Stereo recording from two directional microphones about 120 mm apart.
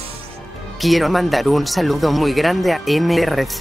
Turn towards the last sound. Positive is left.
turn(degrees=0)  # may be behind; listen again after turning